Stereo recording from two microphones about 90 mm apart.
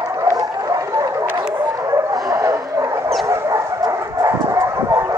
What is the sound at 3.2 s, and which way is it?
Bow-wow, 30° right (ahead or behind).